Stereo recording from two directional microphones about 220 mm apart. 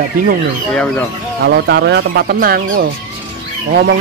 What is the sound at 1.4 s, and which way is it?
Speech, 50° right (ahead or behind).